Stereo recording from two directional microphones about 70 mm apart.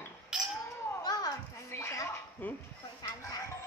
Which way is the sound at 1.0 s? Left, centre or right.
Left.